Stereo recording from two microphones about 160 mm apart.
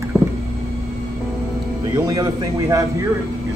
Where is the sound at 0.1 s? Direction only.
Centre (ahead or behind).